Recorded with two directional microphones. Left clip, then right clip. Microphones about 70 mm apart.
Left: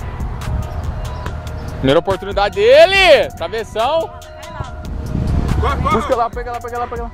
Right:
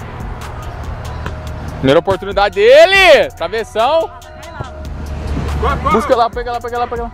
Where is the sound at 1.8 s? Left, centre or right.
Centre.